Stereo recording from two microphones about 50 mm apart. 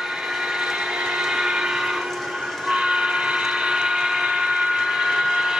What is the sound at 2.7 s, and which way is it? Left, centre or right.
Train, centre.